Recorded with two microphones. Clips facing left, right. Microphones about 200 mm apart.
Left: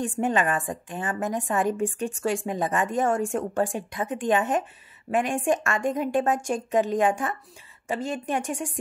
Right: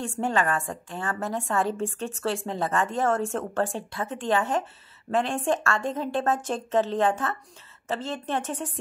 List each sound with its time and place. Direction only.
0.0 s a woman's voice: 20° left (ahead or behind)